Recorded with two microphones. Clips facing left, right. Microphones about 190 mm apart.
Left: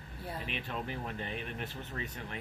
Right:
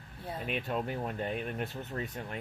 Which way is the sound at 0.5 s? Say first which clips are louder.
Right 8 dB; 45° right (ahead or behind).